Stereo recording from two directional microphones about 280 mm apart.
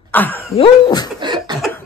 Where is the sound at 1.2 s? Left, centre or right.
Centre.